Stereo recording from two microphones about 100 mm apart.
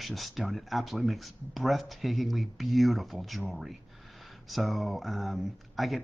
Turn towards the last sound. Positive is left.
turn(degrees=0)  # may be behind; listen again after turning